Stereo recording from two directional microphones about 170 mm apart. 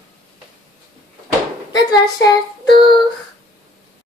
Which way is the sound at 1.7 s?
25° left (ahead or behind).